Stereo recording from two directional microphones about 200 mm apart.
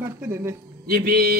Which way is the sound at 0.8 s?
50° right (ahead or behind).